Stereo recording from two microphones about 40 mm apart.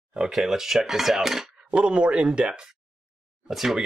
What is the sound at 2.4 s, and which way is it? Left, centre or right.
Speech, centre.